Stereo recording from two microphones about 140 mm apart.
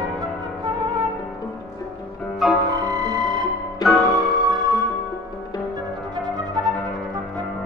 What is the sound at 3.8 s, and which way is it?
Music, centre (ahead or behind).